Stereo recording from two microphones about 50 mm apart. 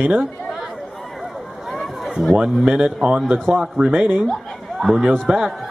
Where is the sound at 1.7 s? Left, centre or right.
Centre.